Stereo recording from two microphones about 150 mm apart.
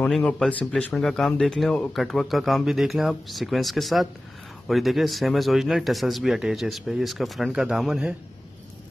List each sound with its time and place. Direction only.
0.0 s speech: 10° left (ahead or behind)